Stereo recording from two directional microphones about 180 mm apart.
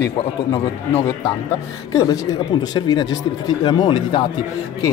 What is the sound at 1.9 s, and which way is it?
Speech, 20° left (ahead or behind).